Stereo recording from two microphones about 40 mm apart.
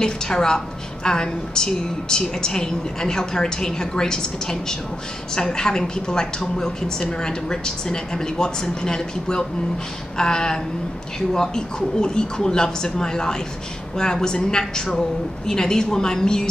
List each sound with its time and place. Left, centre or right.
0.0 s a woman's voice: centre